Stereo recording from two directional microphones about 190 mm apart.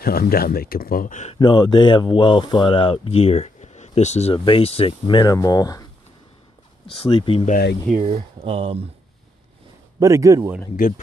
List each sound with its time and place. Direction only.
0.0 s speech: 50° left (ahead or behind)
1.4 s speech: 25° left (ahead or behind)
7.0 s speech: 25° left (ahead or behind)
8.0 s speech: 30° right (ahead or behind)
9.9 s a man's voice: 15° right (ahead or behind)